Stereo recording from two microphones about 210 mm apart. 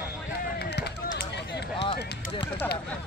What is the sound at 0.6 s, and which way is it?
Run, 50° left (ahead or behind).